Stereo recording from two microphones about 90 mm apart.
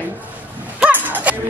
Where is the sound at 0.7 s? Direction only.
20° right (ahead or behind).